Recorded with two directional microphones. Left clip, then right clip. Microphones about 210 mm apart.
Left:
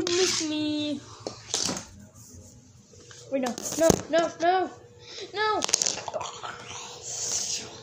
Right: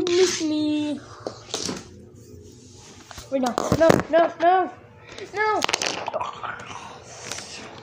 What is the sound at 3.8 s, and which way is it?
Speech, 5° right (ahead or behind).